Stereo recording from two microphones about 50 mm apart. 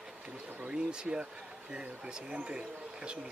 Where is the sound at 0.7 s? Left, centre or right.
Centre.